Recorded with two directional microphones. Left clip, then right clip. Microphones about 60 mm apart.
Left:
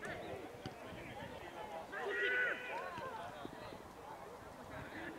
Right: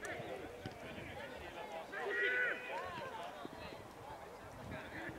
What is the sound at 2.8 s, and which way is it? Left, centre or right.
Run, right.